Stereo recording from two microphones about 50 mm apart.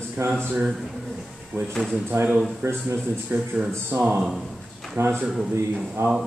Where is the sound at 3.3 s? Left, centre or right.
Right.